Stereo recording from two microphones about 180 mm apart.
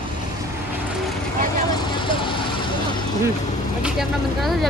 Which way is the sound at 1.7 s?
25° left (ahead or behind).